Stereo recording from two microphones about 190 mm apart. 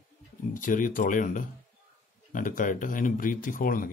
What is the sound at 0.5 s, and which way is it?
A man's voice, 45° left (ahead or behind).